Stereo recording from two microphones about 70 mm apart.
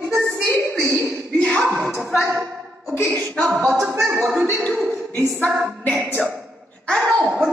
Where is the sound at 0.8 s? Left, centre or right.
Right.